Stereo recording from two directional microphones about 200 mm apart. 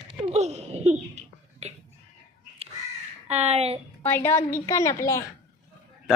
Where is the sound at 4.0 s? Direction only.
10° left (ahead or behind).